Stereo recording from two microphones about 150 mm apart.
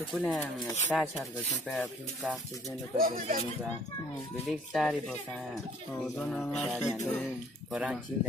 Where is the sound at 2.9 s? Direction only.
65° right (ahead or behind).